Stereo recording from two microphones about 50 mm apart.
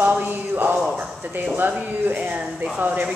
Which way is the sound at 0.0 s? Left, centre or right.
Right.